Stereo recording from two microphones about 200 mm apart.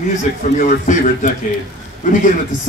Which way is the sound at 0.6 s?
40° left (ahead or behind).